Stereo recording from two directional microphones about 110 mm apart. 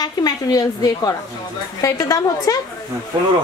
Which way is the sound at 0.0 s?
35° left (ahead or behind).